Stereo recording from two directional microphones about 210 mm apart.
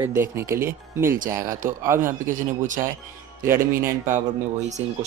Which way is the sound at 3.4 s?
10° right (ahead or behind).